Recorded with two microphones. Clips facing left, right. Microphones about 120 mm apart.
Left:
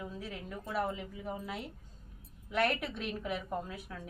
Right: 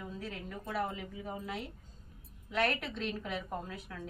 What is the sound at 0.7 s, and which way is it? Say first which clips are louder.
Speech: left 2 dB; 5° left (ahead or behind).